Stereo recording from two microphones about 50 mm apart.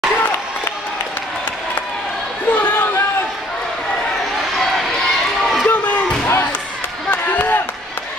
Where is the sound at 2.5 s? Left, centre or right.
Left.